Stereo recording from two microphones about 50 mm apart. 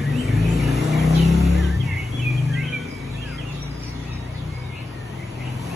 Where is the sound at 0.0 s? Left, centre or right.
Centre.